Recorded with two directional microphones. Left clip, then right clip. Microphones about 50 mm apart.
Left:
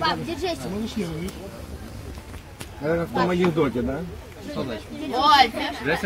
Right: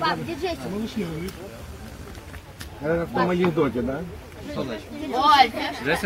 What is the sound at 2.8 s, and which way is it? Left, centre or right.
Speech, centre.